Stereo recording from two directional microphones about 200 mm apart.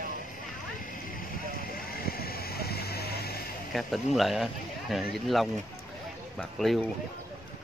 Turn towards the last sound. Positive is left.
turn(degrees=0)  # may be behind; listen again after turning